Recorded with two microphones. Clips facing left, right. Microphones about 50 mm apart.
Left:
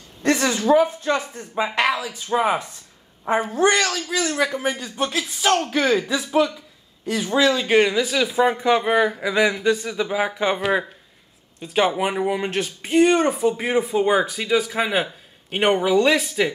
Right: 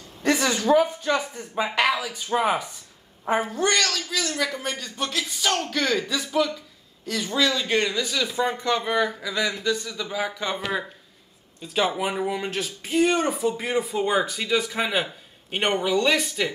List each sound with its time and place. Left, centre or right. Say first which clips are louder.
0.2 s speech: left 2 dB; centre
3.6 s speech: left 4 dB; centre
8.7 s speech: left 5 dB; left
11.6 s speech: left 4 dB; centre
12.4 s speech: left 4 dB; centre